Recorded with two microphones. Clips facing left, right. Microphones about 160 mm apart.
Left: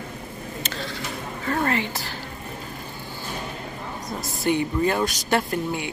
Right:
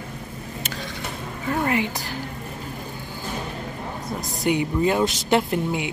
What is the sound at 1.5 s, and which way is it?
Speech, 10° right (ahead or behind).